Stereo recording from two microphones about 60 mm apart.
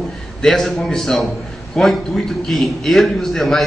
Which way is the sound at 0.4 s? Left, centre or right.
Centre.